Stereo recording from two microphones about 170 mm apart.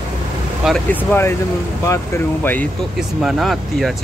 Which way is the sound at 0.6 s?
5° right (ahead or behind).